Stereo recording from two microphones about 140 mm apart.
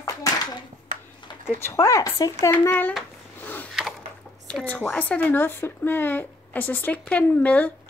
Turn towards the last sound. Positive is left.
turn(degrees=10)  # may be behind; listen again after turning